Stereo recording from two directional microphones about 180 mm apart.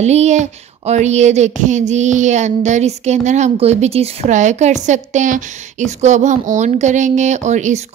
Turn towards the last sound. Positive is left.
turn(degrees=-40)  # may be behind; listen again after turning